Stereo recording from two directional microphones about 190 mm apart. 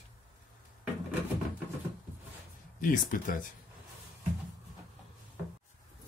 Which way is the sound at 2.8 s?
45° left (ahead or behind).